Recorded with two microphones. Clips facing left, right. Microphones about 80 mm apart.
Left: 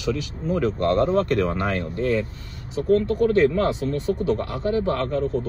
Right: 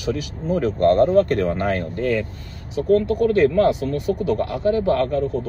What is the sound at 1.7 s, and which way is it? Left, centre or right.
Speech, right.